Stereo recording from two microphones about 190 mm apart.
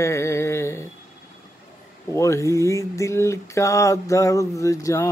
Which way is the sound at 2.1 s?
15° left (ahead or behind).